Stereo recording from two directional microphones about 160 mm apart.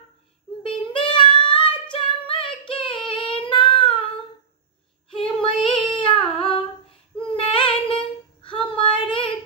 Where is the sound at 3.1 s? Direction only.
35° left (ahead or behind).